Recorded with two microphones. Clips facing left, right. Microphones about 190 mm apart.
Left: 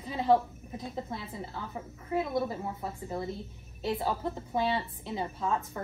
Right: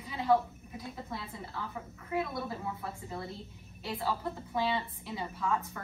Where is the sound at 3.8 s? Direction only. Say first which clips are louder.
Left 4 dB; 20° left (ahead or behind).